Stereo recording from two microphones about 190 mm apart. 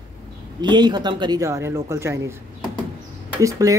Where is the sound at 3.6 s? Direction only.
15° right (ahead or behind).